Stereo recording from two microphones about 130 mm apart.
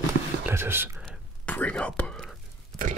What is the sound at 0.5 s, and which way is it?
Speech, 20° right (ahead or behind).